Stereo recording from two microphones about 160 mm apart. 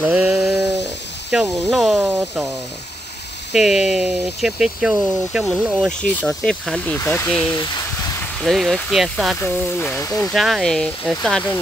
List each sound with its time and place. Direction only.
0.0 s a sound: 10° right (ahead or behind)
1.3 s speech: 5° right (ahead or behind)
3.5 s speech: 5° right (ahead or behind)
5.8 s speech: 5° left (ahead or behind)
7.5 s speech: 25° left (ahead or behind)
8.2 s speech: centre (ahead or behind)
9.4 s speech: 10° left (ahead or behind)
10.3 s speech: centre (ahead or behind)